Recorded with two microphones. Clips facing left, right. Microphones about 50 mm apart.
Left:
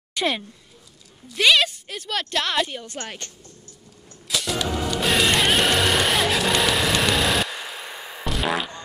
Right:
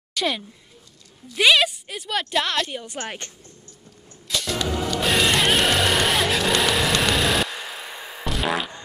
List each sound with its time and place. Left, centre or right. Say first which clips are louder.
0.1 s a sound: left 1 dB; centre
1.3 s a woman's voice: right 1 dB; centre
3.0 s speech: right 3 dB; centre
4.3 s music: even; centre